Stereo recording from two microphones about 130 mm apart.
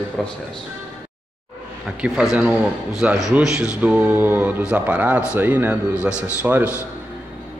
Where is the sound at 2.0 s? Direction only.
5° right (ahead or behind).